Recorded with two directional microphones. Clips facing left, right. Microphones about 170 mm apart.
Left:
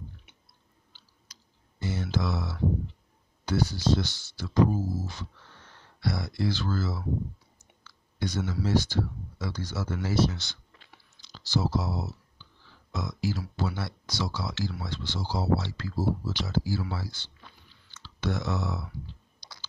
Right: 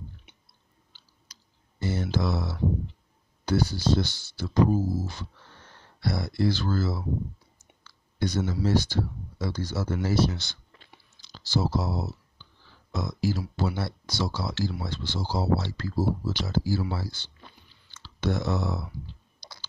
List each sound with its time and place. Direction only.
1.3 s clicking: 35° right (ahead or behind)
3.4 s speech: 35° right (ahead or behind)
5.9 s speech: 35° right (ahead or behind)
8.2 s speech: 35° right (ahead or behind)